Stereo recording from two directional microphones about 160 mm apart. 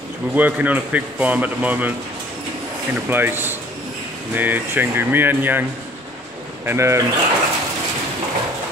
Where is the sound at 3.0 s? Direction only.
10° right (ahead or behind).